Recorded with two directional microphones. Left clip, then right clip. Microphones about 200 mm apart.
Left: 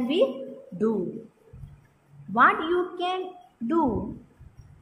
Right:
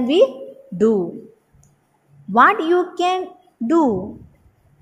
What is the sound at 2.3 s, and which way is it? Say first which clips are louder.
Speech: right 7 dB; 35° right (ahead or behind).